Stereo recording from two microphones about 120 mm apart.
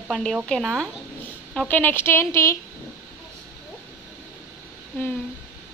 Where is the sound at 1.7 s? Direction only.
15° left (ahead or behind).